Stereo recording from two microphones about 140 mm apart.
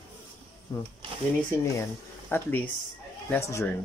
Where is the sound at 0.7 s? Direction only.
30° left (ahead or behind).